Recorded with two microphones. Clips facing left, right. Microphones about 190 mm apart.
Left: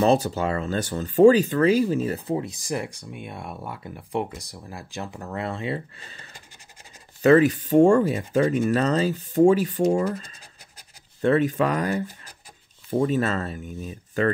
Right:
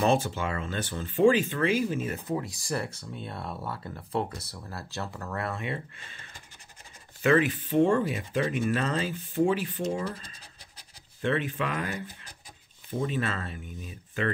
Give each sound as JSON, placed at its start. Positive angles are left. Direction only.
{"t": 0.0, "sound": "speech", "side_deg": 40}